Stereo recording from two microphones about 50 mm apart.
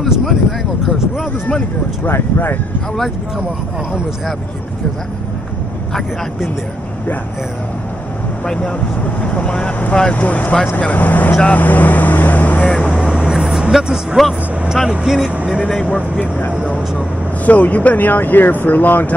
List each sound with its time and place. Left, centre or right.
0.0 s speech: centre
2.0 s speech: left
9.0 s speech: left
10.1 s speech: left
11.4 s vehicle: left
13.0 s vehicle: centre
14.2 s speech: centre
15.0 s speech: centre
15.8 s speech: left